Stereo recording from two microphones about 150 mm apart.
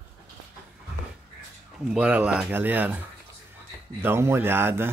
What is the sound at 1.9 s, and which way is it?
Speech, 10° right (ahead or behind).